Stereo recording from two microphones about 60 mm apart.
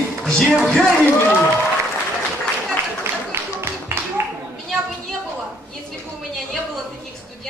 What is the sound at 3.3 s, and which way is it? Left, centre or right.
Music, right.